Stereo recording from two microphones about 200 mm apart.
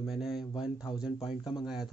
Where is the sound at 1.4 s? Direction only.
20° left (ahead or behind).